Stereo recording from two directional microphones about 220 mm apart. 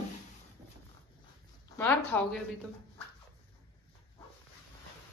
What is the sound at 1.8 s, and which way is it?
Speech, 5° left (ahead or behind).